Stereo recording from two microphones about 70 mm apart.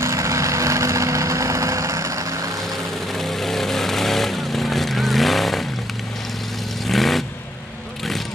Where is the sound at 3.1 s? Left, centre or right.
Centre.